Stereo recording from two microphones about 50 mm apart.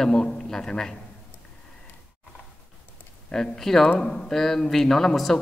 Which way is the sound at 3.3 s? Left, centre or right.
Centre.